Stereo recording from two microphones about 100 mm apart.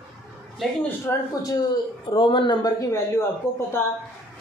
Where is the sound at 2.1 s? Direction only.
60° left (ahead or behind).